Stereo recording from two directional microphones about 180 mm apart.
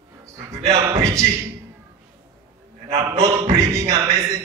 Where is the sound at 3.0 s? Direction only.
20° right (ahead or behind).